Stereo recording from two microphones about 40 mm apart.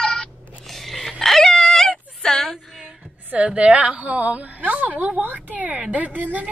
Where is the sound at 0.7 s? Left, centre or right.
Centre.